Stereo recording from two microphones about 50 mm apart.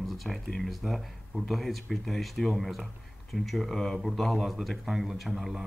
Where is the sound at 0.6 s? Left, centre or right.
Centre.